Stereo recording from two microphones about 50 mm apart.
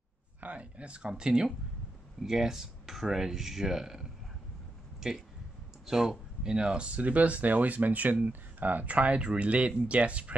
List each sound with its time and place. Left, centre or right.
0.4 s speech: right; by 4.1 s centre
5.9 s speech: centre; by 10.3 s right